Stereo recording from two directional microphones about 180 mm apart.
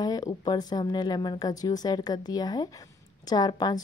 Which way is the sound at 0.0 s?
20° left (ahead or behind).